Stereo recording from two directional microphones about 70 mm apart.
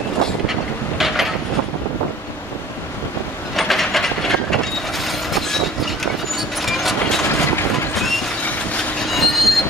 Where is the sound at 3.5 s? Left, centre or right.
Centre.